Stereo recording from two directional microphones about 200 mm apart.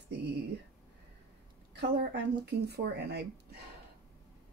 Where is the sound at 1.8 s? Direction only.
55° right (ahead or behind).